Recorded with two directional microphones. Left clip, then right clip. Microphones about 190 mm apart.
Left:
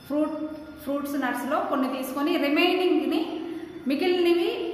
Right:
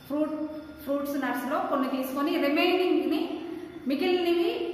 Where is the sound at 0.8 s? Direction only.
25° left (ahead or behind).